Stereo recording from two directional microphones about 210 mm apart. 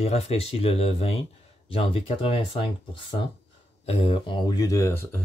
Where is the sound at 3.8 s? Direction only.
30° left (ahead or behind); by 5.1 s 10° left (ahead or behind).